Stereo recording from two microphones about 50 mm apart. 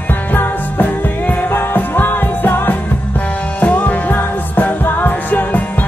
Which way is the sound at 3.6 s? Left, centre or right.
Left.